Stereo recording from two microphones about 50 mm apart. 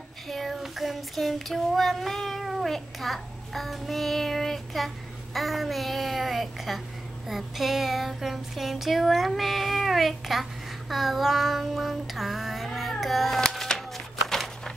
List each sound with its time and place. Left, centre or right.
0.3 s child singing: centre
13.0 s music: centre
13.4 s a sound: centre